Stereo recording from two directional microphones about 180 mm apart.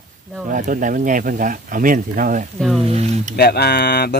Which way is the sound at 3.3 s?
60° left (ahead or behind).